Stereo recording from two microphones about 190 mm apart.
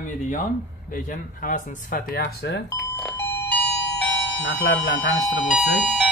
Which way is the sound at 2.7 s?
10° left (ahead or behind).